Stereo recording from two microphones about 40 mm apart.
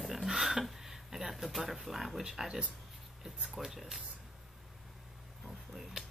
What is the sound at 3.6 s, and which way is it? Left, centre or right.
Speech, centre.